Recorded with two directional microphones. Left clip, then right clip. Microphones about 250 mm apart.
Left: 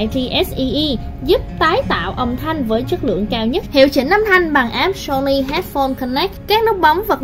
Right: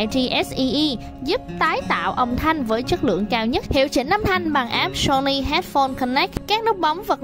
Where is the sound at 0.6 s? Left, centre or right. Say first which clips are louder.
Left 2 dB; right.